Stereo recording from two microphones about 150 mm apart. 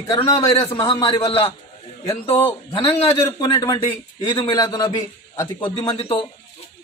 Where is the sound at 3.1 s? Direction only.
25° left (ahead or behind).